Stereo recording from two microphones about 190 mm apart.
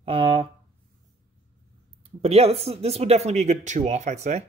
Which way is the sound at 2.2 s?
35° right (ahead or behind).